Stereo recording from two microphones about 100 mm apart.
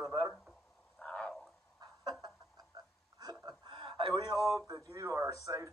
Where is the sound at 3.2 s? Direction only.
45° right (ahead or behind).